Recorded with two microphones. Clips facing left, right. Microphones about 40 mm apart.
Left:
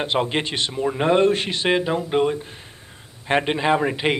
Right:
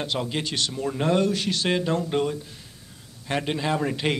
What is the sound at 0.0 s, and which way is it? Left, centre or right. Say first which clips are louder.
Speech: left 6 dB; left.